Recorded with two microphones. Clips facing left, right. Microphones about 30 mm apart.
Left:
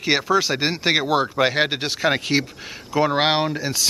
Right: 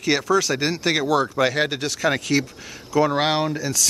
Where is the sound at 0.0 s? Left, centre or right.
Left.